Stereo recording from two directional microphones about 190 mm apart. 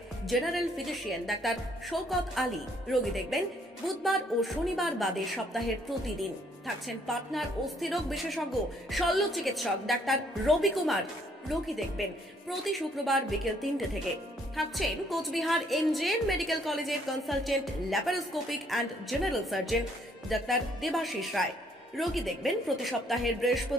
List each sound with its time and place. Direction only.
0.3 s a woman's voice: centre (ahead or behind)